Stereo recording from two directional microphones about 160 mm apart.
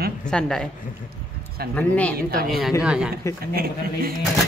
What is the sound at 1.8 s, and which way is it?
Speech, 10° left (ahead or behind).